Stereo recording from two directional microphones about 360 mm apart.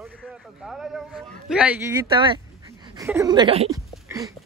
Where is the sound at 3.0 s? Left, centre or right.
Centre.